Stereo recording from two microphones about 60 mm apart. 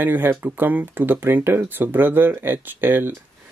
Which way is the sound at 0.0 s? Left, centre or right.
Right.